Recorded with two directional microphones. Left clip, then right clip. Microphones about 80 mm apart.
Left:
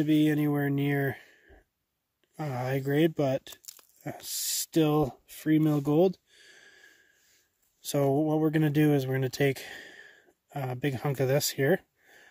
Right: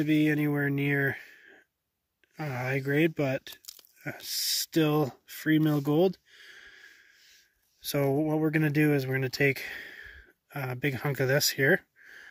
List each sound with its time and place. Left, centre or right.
0.0 s speech: left; by 1.6 s centre
2.3 s speech: left
7.8 s speech: left